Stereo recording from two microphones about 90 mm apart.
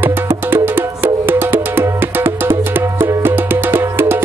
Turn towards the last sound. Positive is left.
turn(degrees=-25)  # may be behind; listen again after turning